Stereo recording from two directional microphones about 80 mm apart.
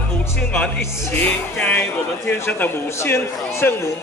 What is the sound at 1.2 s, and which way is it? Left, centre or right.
A man's voice, centre.